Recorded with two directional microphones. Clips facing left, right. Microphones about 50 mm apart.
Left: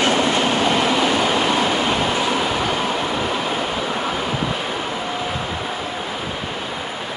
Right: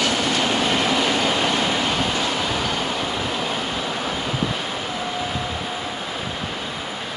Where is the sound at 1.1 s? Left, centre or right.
Centre.